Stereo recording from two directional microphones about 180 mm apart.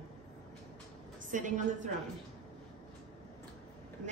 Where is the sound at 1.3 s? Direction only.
45° right (ahead or behind).